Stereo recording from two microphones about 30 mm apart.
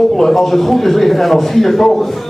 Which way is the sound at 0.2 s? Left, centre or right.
Centre.